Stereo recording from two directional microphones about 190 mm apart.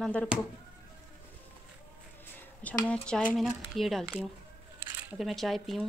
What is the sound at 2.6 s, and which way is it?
Speech, 5° left (ahead or behind).